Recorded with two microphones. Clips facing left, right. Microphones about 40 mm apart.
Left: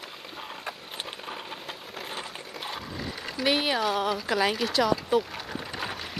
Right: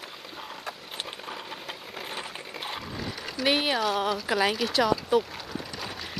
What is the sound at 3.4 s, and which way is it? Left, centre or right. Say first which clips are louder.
Speech: even; centre.